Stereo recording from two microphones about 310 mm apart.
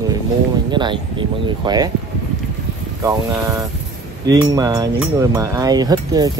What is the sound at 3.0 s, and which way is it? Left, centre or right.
Speech, centre.